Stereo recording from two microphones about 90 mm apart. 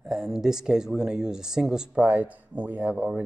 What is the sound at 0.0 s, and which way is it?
Speech, 5° right (ahead or behind).